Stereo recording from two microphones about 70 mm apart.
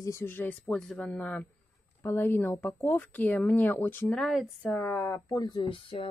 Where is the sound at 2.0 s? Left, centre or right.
Left.